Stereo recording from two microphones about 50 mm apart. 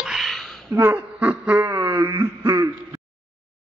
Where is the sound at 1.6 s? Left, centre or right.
Right.